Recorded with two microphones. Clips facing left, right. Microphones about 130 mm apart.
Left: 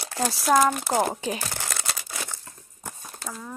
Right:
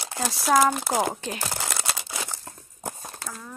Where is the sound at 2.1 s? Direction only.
15° right (ahead or behind).